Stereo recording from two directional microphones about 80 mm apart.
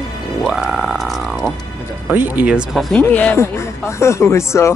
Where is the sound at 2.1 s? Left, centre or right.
Right.